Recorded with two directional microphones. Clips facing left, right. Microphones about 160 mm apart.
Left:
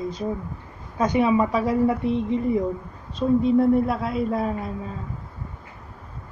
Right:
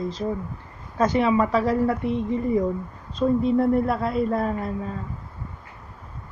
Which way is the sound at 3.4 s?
Centre (ahead or behind).